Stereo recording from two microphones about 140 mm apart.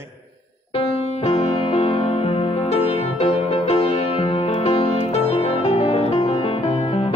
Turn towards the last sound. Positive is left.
turn(degrees=45)  # may be behind; listen again after turning